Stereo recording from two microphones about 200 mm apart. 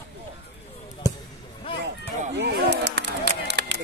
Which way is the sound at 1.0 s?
15° right (ahead or behind).